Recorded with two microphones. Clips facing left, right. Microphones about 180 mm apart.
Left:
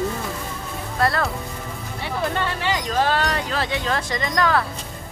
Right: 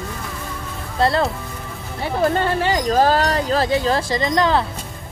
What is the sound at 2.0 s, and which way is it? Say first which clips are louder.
Speech: right 6 dB; 45° right (ahead or behind).